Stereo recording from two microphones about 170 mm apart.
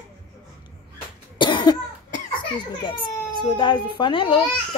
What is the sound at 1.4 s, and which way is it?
Cough, 25° left (ahead or behind).